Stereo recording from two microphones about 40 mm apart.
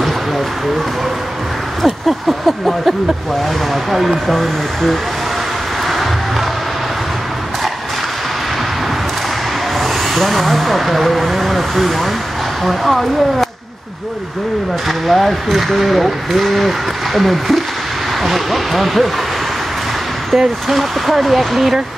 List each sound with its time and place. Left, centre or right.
1.8 s a sound: centre
3.4 s speech: centre
9.8 s speech: centre
14.9 s speech: centre
20.2 s speech: centre